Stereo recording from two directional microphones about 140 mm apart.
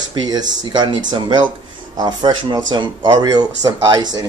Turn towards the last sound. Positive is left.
turn(degrees=-30)  # may be behind; listen again after turning